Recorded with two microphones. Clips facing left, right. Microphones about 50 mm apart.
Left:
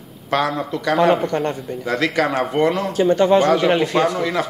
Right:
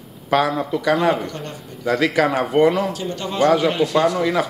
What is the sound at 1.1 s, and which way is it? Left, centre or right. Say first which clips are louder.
Speech: left 7 dB; left.